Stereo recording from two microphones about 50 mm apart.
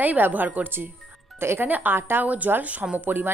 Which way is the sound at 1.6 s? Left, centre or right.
Right.